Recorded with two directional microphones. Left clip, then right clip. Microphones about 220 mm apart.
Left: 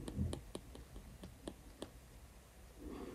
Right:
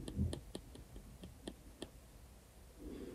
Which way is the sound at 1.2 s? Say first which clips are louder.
Left 1 dB; 20° left (ahead or behind).